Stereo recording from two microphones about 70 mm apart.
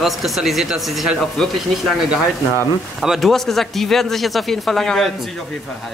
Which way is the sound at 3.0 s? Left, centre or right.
Centre.